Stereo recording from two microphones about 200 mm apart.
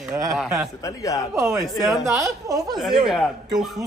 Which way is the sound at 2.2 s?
15° right (ahead or behind).